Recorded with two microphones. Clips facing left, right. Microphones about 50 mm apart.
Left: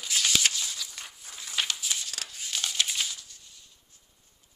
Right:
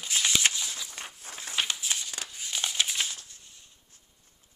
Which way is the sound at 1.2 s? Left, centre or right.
Right.